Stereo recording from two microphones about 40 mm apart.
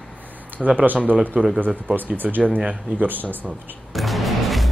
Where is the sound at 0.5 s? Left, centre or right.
Right.